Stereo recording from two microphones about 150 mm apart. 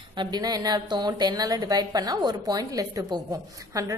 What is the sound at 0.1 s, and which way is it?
A woman's voice, 30° right (ahead or behind).